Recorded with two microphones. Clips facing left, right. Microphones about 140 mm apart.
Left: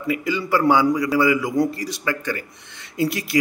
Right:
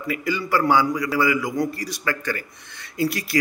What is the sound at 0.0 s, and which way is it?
A man's voice, 20° left (ahead or behind).